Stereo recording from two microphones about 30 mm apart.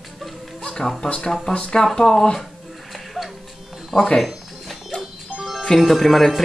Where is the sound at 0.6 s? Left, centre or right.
Left.